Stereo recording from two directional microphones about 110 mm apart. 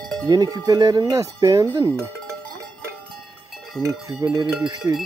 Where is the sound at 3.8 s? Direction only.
35° right (ahead or behind).